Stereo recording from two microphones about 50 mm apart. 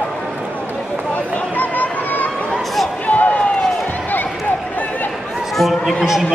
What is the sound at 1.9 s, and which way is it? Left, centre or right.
Run, left.